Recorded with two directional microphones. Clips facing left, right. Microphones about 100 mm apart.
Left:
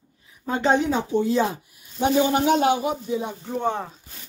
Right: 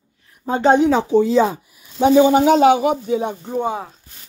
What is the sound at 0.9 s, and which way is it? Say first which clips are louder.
Speech: right 7 dB; 90° right.